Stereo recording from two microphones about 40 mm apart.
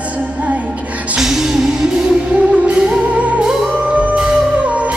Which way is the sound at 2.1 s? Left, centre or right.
Right.